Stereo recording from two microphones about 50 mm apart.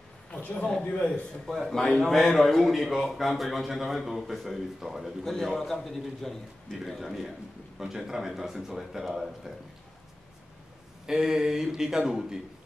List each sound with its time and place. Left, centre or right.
0.3 s a man's voice: left
1.7 s a man's voice: centre
5.2 s a man's voice: centre
11.1 s a man's voice: centre